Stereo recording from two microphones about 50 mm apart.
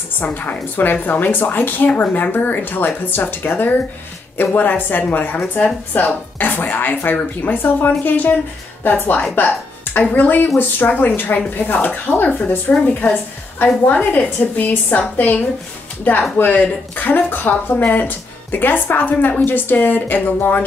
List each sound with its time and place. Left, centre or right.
0.2 s a woman's voice: left